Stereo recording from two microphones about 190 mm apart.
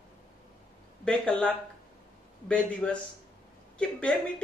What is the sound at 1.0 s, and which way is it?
Speech, 5° left (ahead or behind).